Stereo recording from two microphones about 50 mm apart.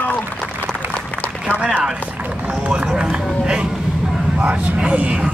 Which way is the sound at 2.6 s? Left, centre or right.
Right.